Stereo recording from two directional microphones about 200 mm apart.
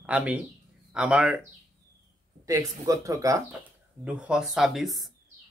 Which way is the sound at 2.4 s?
15° right (ahead or behind).